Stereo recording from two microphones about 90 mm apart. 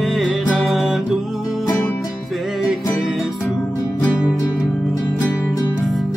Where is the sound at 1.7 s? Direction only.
25° left (ahead or behind).